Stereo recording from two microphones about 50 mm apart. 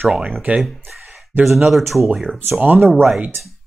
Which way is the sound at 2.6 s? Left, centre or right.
Right.